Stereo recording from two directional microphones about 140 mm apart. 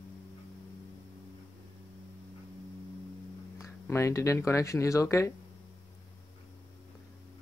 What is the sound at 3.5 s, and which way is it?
Speech, 20° left (ahead or behind).